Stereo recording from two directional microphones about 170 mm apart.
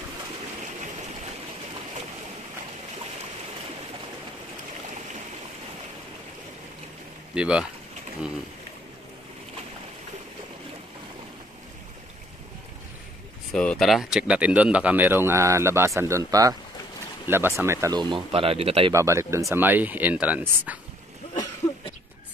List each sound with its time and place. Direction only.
7.3 s speech: 5° right (ahead or behind)
13.5 s speech: 5° left (ahead or behind); by 18.9 s 35° right (ahead or behind)
18.9 s speech: 15° right (ahead or behind)